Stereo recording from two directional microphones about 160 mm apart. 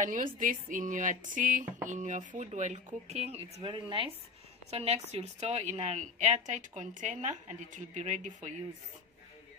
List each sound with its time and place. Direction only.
0.0 s a woman's voice: 55° right (ahead or behind)